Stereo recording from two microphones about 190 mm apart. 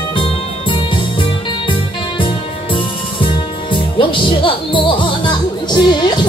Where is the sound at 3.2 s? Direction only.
25° left (ahead or behind).